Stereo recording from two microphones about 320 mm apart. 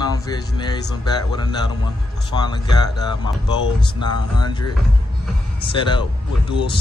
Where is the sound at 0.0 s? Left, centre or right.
Centre.